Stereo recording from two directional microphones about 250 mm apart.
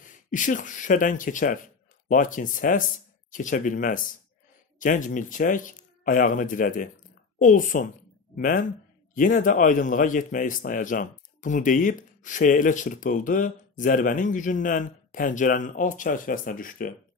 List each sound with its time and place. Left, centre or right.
0.0 s speech: left